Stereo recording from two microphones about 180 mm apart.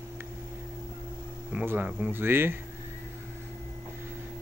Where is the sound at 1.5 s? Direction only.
10° right (ahead or behind).